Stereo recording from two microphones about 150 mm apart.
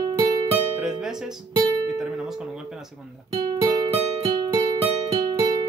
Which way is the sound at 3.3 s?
30° right (ahead or behind).